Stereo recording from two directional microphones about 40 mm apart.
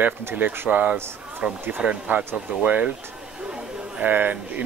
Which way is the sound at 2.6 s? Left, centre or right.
Right.